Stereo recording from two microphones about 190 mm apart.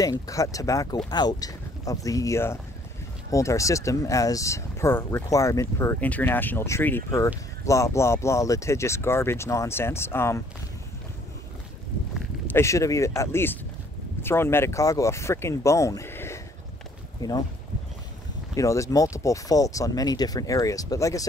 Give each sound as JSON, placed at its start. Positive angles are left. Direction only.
{"t": 0.0, "sound": "speech", "side_deg": 20}
{"t": 12.4, "sound": "speech", "side_deg": 15}
{"t": 18.5, "sound": "speech", "side_deg": 15}